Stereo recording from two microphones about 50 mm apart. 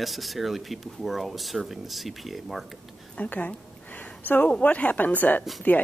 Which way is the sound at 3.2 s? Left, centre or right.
Left.